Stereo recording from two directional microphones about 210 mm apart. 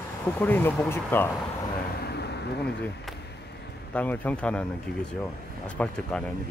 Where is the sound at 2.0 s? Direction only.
50° left (ahead or behind).